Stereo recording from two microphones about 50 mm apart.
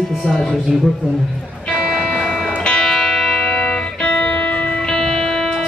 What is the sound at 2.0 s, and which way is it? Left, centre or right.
Music, centre.